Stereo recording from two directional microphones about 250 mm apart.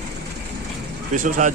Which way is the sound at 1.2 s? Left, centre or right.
Right.